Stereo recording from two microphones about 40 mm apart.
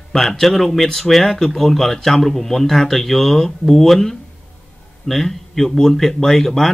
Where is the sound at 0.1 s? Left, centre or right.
Centre.